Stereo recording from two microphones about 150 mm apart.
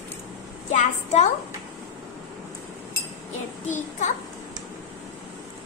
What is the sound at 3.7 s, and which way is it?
Child singing, 55° left (ahead or behind).